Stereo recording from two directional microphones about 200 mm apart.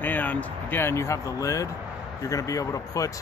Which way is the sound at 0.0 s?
10° left (ahead or behind).